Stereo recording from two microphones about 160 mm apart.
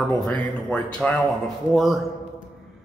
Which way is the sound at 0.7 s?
5° left (ahead or behind).